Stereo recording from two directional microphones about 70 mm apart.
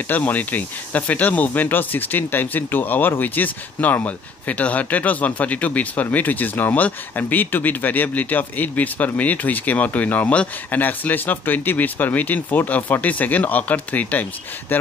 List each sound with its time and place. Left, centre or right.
0.1 s speech: left